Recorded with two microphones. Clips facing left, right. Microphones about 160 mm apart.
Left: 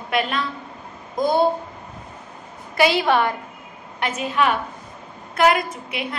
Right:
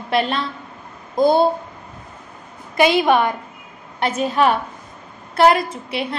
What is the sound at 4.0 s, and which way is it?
A woman's voice, 35° right (ahead or behind).